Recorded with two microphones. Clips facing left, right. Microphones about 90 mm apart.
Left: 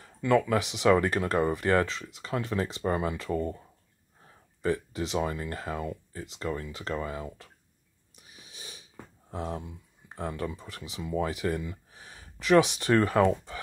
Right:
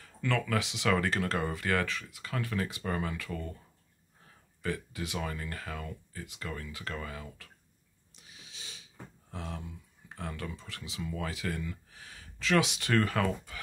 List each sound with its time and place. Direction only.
0.0 s speech: 20° left (ahead or behind)
9.3 s speech: 20° left (ahead or behind)